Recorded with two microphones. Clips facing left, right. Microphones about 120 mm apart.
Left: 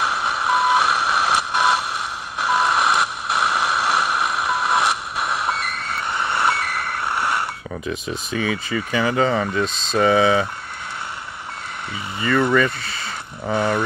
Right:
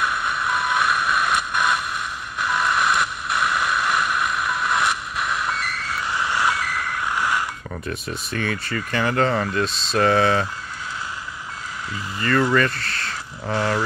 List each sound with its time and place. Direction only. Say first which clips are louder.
0.0 s vehicle: left 2 dB; 75° left (ahead or behind)
2.4 s a sound: left 3 dB; 70° left (ahead or behind)
7.9 s speech: left 3 dB; centre (ahead or behind)
12.2 s speech: left 1 dB; 5° left (ahead or behind)